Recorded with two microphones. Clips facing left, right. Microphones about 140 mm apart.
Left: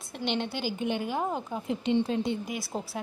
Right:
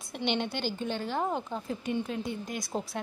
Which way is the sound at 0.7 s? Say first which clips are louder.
Left 4 dB; 15° left (ahead or behind).